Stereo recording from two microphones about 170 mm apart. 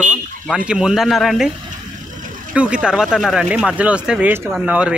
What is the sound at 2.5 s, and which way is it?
Speech, 5° right (ahead or behind).